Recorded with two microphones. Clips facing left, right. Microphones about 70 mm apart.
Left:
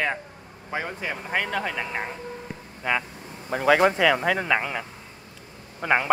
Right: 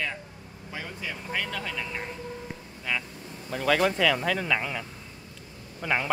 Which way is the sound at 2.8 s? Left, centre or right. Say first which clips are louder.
Left 6 dB; left.